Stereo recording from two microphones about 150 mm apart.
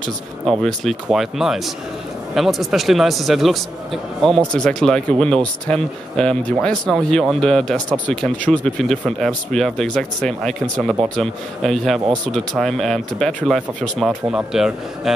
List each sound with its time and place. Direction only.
0.5 s a man's voice: centre (ahead or behind)